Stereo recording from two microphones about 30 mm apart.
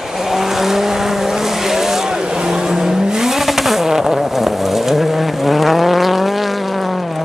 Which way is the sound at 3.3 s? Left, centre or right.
Centre.